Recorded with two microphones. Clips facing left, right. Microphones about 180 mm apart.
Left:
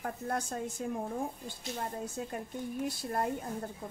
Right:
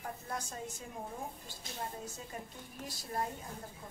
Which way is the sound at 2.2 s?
55° left (ahead or behind).